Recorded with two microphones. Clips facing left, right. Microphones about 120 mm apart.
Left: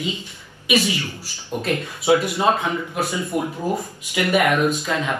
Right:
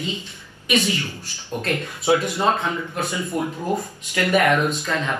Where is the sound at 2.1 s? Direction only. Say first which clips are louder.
Left 2 dB; centre (ahead or behind).